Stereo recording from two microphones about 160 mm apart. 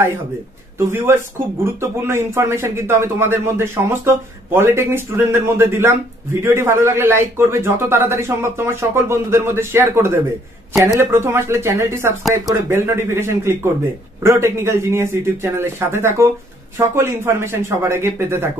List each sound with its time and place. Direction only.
0.7 s speech: 15° right (ahead or behind)
12.2 s speech: centre (ahead or behind)
12.6 s speech: 15° right (ahead or behind)